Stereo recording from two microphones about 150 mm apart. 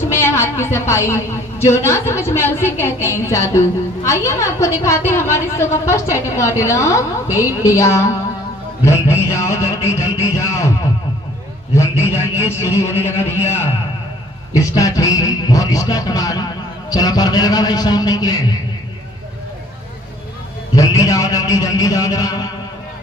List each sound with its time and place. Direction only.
0.0 s a woman's voice: 15° left (ahead or behind)
11.7 s a woman's voice: 20° left (ahead or behind)
12.9 s a sound: 45° left (ahead or behind)
14.5 s a woman's voice: 20° left (ahead or behind)
20.7 s a woman's voice: 20° left (ahead or behind)